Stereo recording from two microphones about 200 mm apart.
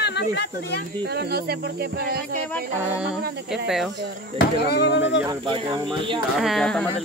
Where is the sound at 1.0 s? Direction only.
50° right (ahead or behind).